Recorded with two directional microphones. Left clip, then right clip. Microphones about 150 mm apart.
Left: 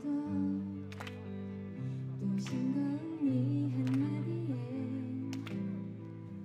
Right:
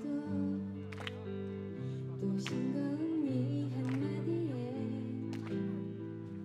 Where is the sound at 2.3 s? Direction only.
30° right (ahead or behind).